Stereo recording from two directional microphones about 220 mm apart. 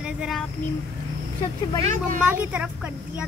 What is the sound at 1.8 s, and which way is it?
Speech, 35° right (ahead or behind).